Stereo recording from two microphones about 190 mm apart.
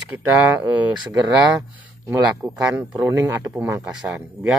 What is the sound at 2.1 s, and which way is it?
A man's voice, 5° right (ahead or behind).